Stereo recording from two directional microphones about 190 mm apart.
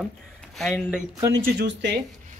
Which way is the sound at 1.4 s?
65° right (ahead or behind).